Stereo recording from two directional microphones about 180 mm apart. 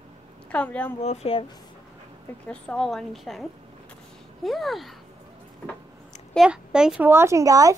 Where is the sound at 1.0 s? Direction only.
35° left (ahead or behind).